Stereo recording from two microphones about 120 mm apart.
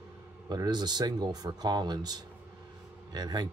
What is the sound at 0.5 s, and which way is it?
Speech, 35° right (ahead or behind).